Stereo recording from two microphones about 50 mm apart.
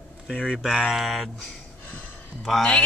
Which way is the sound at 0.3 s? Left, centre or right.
Left.